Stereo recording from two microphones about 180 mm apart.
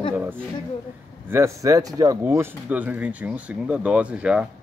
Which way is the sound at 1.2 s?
15° right (ahead or behind).